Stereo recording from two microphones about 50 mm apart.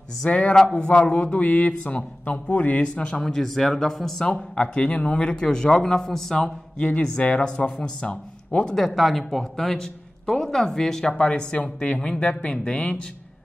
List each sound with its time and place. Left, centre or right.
0.2 s speech: left
3.3 s speech: centre
4.2 s speech: centre
6.8 s speech: left
8.7 s speech: centre
11.1 s speech: left